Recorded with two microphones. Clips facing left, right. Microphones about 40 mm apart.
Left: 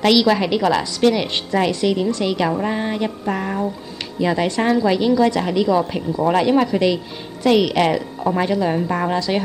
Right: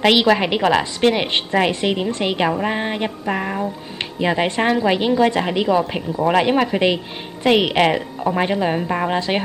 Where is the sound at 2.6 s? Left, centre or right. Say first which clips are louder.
Even; right.